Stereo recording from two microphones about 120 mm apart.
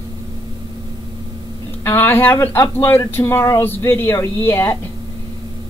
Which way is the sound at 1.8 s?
15° left (ahead or behind).